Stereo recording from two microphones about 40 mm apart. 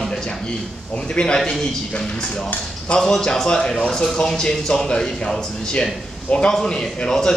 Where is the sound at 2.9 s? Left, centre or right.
Centre.